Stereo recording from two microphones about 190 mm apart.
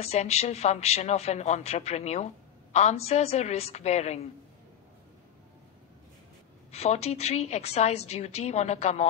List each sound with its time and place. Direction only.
0.0 s a woman's voice: 35° left (ahead or behind)
6.7 s a woman's voice: 35° left (ahead or behind)